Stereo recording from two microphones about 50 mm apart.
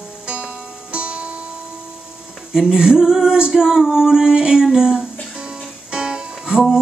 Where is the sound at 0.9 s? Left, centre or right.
Right.